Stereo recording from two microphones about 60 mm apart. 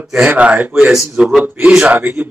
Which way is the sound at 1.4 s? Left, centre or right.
Right.